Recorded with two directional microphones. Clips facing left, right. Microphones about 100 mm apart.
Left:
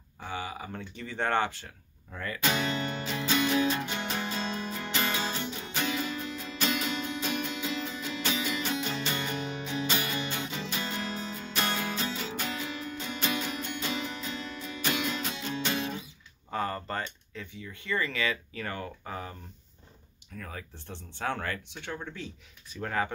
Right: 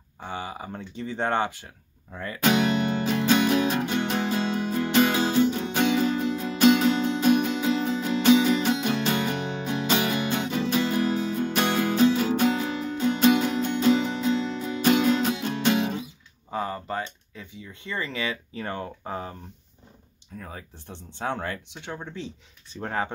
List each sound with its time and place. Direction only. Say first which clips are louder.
0.2 s speech: right 3 dB; 25° right (ahead or behind)
2.4 s music: right 8 dB; 65° right (ahead or behind)
15.7 s guitar: right 10 dB; 85° right
16.4 s speech: right 2 dB; 15° right (ahead or behind); by 19.3 s 30° right (ahead or behind)
20.3 s speech: right 2 dB; 20° right (ahead or behind)